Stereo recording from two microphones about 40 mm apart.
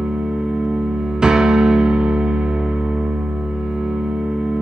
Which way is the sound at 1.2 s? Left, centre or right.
Centre.